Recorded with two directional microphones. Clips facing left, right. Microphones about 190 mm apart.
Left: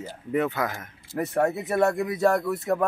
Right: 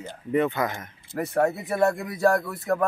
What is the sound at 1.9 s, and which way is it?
Speech, 20° left (ahead or behind).